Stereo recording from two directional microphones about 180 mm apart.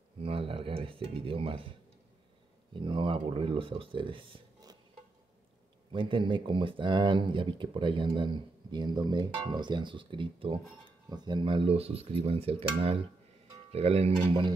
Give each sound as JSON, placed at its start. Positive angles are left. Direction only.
{"t": 0.2, "sound": "speech", "side_deg": -30}
{"t": 2.7, "sound": "speech", "side_deg": -30}
{"t": 5.9, "sound": "speech", "side_deg": -30}
{"t": 11.1, "sound": "cutlery", "side_deg": -25}